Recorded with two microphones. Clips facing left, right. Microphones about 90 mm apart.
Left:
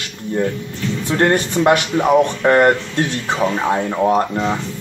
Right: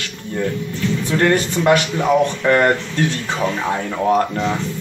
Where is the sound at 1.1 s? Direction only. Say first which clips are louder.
Left 1 dB; 30° left (ahead or behind).